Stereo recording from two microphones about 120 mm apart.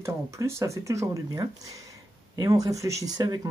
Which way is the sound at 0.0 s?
25° right (ahead or behind).